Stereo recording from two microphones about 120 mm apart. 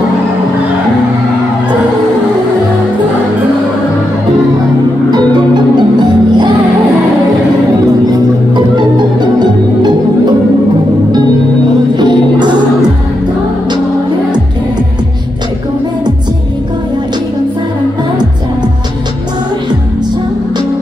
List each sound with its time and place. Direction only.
5.1 s music: 40° right (ahead or behind)
8.1 s music: 40° right (ahead or behind)
12.0 s music: 40° right (ahead or behind)